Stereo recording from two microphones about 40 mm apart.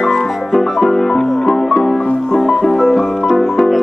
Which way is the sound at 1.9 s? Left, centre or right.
Left.